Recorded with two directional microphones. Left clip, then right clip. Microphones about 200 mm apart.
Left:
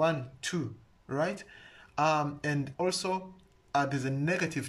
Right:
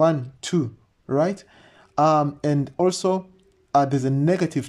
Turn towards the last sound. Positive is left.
turn(degrees=-30)  # may be behind; listen again after turning